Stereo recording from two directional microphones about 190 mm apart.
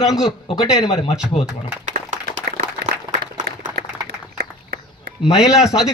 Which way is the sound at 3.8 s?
55° right (ahead or behind).